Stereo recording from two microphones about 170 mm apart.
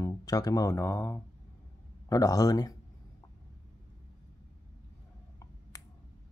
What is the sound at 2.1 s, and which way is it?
Speech, 20° left (ahead or behind).